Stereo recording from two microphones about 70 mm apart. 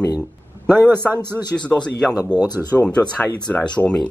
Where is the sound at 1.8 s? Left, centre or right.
Centre.